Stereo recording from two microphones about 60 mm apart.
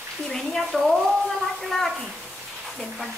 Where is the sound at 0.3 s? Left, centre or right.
Centre.